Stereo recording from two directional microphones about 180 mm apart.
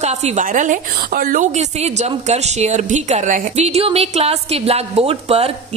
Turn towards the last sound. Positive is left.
turn(degrees=-35)  # may be behind; listen again after turning